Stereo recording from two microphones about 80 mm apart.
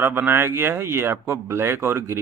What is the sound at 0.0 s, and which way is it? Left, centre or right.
A man's voice, right.